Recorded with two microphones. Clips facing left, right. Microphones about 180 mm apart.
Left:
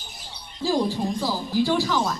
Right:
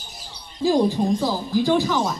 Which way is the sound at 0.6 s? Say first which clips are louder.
Right 5 dB; 15° right (ahead or behind).